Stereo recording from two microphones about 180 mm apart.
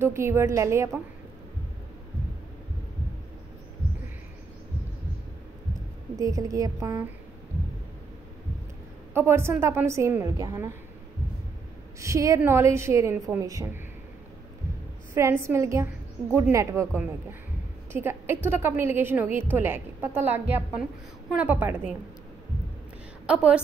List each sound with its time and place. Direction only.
0.0 s a woman's voice: 15° right (ahead or behind)
6.1 s a woman's voice: 20° right (ahead or behind)
9.1 s a woman's voice: 15° right (ahead or behind)
12.0 s a woman's voice: 15° right (ahead or behind)
15.1 s a woman's voice: 15° right (ahead or behind)
23.2 s a woman's voice: 5° right (ahead or behind)